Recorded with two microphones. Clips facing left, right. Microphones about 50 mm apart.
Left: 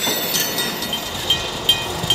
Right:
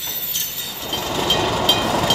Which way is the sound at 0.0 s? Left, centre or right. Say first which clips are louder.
Left 9 dB; left.